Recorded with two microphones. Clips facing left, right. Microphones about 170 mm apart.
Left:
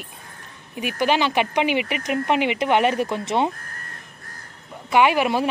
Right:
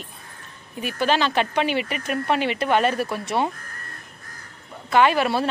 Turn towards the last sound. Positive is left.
turn(degrees=15)  # may be behind; listen again after turning